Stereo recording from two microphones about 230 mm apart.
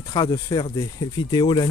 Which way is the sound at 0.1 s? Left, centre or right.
Centre.